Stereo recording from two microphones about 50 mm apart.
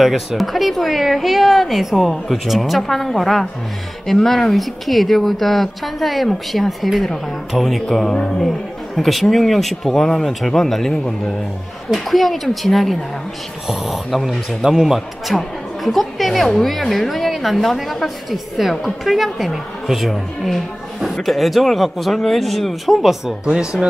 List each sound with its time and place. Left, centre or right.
0.0 s a man's voice: centre
23.4 s speech: centre